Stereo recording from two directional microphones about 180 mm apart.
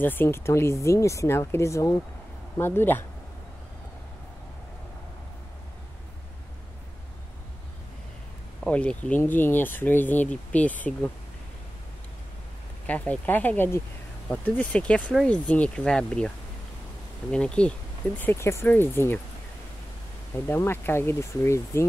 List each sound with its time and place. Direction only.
0.0 s speech: 10° left (ahead or behind)
8.6 s speech: 5° left (ahead or behind)
12.8 s speech: 10° left (ahead or behind)
17.3 s speech: 5° left (ahead or behind)
20.4 s speech: 15° left (ahead or behind)